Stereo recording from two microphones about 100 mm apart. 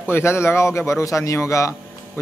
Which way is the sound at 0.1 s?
25° left (ahead or behind).